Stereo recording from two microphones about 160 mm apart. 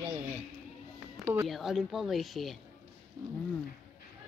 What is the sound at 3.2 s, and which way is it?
Speech, 20° right (ahead or behind).